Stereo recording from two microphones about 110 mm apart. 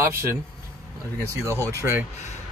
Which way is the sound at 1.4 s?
25° right (ahead or behind).